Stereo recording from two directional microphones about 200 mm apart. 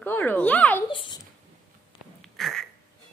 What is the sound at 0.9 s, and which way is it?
Speech, 25° left (ahead or behind).